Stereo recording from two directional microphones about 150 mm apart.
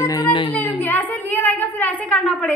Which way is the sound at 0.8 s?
10° left (ahead or behind).